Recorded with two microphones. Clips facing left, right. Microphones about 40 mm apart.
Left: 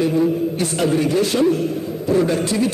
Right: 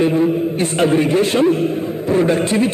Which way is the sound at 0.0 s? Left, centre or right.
Right.